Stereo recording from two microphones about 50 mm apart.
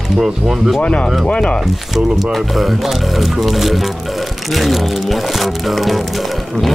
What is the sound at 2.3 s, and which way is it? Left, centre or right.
Speech, centre.